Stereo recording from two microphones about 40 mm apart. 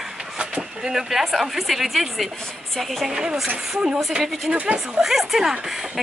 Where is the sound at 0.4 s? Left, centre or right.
Right.